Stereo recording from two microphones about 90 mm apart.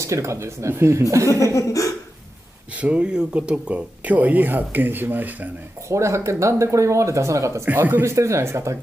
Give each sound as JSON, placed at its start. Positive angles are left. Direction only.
{"t": 0.0, "sound": "speech", "side_deg": -35}
{"t": 1.3, "sound": "chuckle", "side_deg": 35}
{"t": 2.8, "sound": "speech", "side_deg": -10}
{"t": 5.9, "sound": "speech", "side_deg": -35}
{"t": 7.7, "sound": "speech", "side_deg": -20}